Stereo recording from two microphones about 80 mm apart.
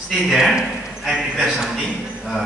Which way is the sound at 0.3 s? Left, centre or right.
Centre.